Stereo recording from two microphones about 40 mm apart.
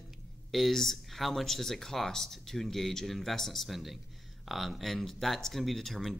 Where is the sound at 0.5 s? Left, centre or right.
Centre.